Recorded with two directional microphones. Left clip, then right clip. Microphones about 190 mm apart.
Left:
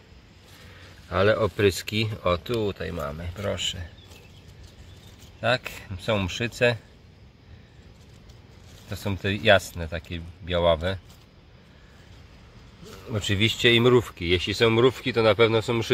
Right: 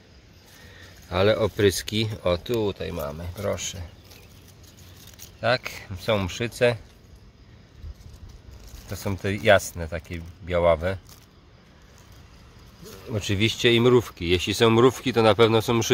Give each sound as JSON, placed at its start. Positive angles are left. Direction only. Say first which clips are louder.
{"t": 1.0, "sound": "speech", "louder": "even", "side_deg": -15}
{"t": 5.4, "sound": "speech", "louder": "right 1 dB", "side_deg": -5}
{"t": 8.9, "sound": "speech", "louder": "even", "side_deg": -5}
{"t": 13.1, "sound": "speech", "louder": "even", "side_deg": -10}